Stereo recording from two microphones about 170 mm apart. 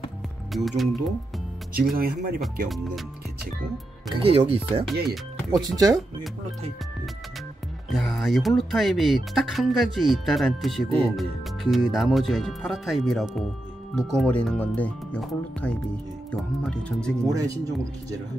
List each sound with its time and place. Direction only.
0.7 s speech: centre (ahead or behind)
1.8 s speech: 60° right (ahead or behind)
4.1 s speech: 35° right (ahead or behind)
5.0 s speech: centre (ahead or behind)
7.9 s speech: centre (ahead or behind)
17.3 s speech: 20° right (ahead or behind)